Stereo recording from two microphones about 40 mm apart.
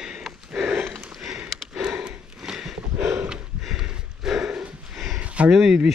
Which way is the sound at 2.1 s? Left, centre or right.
Centre.